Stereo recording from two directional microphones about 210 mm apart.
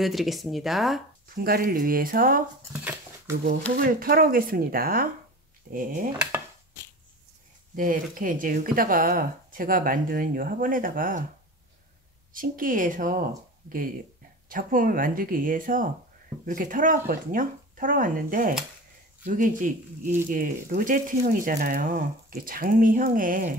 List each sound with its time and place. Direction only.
0.0 s speech: centre (ahead or behind)
1.3 s speech: 45° right (ahead or behind)
2.7 s dog: 5° right (ahead or behind)
3.7 s speech: 45° right (ahead or behind)
7.7 s speech: 40° right (ahead or behind)
12.4 s speech: 40° right (ahead or behind)
14.5 s speech: 40° right (ahead or behind)